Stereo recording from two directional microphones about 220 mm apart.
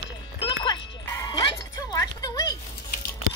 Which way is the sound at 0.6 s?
15° left (ahead or behind).